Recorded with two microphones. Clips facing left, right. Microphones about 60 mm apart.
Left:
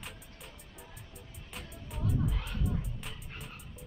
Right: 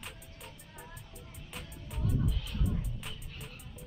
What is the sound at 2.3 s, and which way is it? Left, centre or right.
Music, left.